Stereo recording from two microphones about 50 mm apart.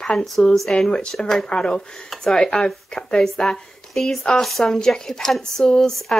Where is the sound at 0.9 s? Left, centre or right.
Centre.